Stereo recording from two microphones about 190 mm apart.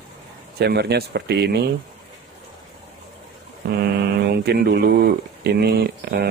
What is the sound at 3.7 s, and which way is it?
Speech, 55° right (ahead or behind).